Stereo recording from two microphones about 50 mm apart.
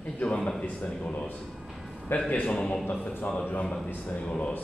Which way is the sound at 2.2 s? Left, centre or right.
Left.